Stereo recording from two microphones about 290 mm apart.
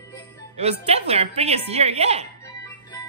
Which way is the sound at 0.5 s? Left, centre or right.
Right.